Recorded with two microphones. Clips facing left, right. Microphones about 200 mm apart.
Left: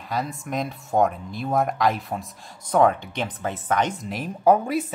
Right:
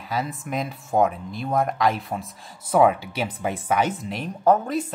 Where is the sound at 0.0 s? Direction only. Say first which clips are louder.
Even; centre (ahead or behind).